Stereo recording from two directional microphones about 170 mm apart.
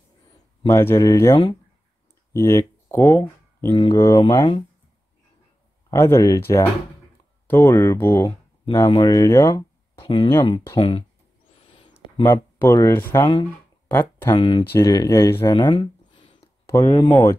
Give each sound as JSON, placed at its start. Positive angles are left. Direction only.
{"t": 0.7, "sound": "speech", "side_deg": 15}
{"t": 5.9, "sound": "speech", "side_deg": 15}
{"t": 9.9, "sound": "speech", "side_deg": 30}
{"t": 11.5, "sound": "owl", "side_deg": 30}
{"t": 12.0, "sound": "a sound", "side_deg": 25}
{"t": 12.5, "sound": "speech", "side_deg": 15}
{"t": 13.8, "sound": "a sound", "side_deg": 15}
{"t": 14.3, "sound": "speech", "side_deg": 30}
{"t": 14.7, "sound": "speech", "side_deg": 20}
{"t": 15.7, "sound": "a sound", "side_deg": 35}
{"t": 16.6, "sound": "speech", "side_deg": 20}